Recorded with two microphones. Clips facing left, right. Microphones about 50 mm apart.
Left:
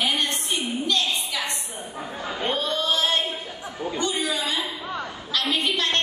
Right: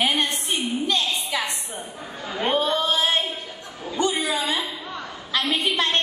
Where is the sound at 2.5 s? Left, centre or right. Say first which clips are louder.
Right 4 dB; centre.